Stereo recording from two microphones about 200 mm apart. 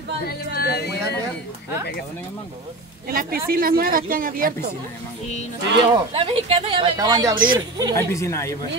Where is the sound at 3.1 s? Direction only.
45° right (ahead or behind).